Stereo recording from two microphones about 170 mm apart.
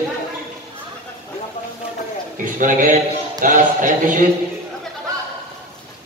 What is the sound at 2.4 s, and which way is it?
A man's voice, 50° right (ahead or behind).